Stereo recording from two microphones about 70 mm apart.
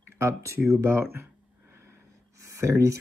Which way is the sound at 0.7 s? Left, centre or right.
Right.